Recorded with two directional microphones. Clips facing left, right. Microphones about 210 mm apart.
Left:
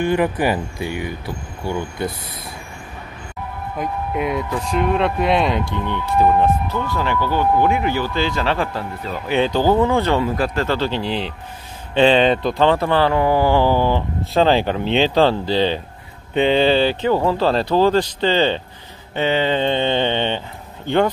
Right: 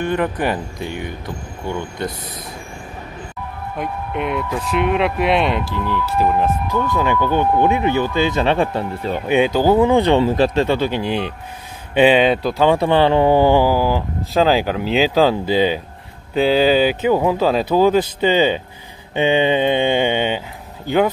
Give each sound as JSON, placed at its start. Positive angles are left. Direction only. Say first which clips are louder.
{"t": 0.0, "sound": "speech", "louder": "left 2 dB", "side_deg": 10}
{"t": 3.7, "sound": "speech", "louder": "left 1 dB", "side_deg": 0}
{"t": 6.7, "sound": "speech", "louder": "right 3 dB", "side_deg": -15}
{"t": 9.3, "sound": "speech", "louder": "right 2 dB", "side_deg": -10}
{"t": 13.7, "sound": "speech", "louder": "even", "side_deg": -5}